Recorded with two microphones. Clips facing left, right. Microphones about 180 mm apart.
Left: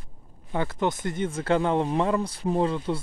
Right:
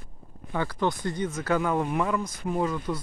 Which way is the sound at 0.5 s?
20° left (ahead or behind).